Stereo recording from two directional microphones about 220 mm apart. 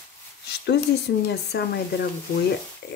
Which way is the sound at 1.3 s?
50° left (ahead or behind).